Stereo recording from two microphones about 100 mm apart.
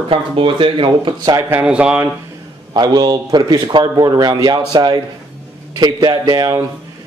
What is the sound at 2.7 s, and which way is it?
Speech, 45° right (ahead or behind).